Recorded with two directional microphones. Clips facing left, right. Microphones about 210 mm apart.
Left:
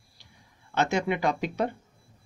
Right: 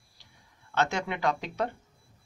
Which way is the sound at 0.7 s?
10° left (ahead or behind).